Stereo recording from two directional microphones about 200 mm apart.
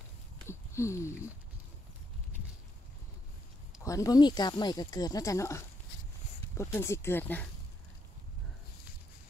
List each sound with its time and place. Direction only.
0.5 s speech: 15° left (ahead or behind)
3.8 s speech: 15° left (ahead or behind)